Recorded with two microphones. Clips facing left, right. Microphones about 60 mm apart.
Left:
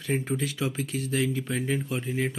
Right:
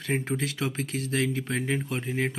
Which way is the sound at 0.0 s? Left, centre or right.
Right.